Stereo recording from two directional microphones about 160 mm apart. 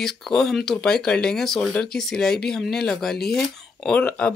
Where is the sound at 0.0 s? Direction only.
5° left (ahead or behind).